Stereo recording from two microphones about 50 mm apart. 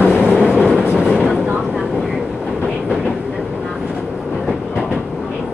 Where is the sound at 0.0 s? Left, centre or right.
Centre.